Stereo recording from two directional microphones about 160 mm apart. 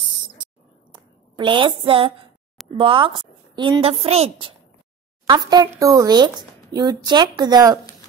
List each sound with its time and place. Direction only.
0.9 s a woman's voice: 30° right (ahead or behind)
5.3 s a woman's voice: 25° right (ahead or behind)